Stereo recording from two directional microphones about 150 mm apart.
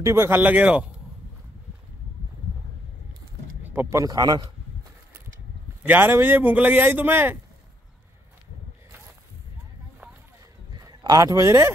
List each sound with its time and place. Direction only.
0.0 s a man's voice: 15° right (ahead or behind)
3.6 s a man's voice: 10° right (ahead or behind)
5.9 s a man's voice: 15° right (ahead or behind)
10.8 s speech: 25° right (ahead or behind)